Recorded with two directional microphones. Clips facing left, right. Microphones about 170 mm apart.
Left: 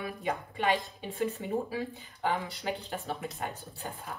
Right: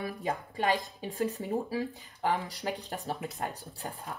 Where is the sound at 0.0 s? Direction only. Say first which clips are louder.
Even; 40° right (ahead or behind).